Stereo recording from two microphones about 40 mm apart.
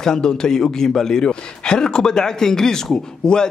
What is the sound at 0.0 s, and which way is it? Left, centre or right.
A man's voice, centre.